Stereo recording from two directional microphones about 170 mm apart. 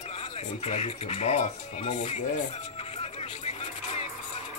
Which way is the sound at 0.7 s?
40° left (ahead or behind).